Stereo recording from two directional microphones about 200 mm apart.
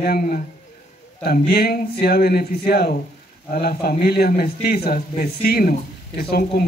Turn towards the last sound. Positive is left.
turn(degrees=50)  # may be behind; listen again after turning